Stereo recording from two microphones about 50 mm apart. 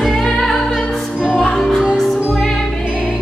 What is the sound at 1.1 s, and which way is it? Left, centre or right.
Music, centre.